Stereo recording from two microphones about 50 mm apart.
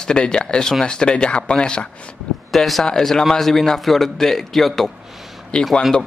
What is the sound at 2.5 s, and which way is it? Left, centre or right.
A man's voice, centre.